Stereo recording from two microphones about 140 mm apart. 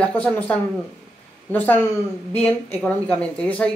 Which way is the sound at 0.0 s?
10° left (ahead or behind).